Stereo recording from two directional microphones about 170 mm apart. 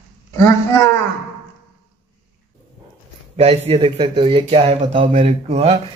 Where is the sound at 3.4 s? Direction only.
35° right (ahead or behind).